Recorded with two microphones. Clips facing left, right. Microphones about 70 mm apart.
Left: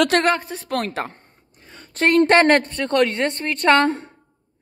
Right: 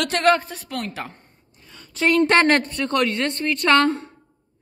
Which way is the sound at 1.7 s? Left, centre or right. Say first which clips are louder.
Left 2 dB; left.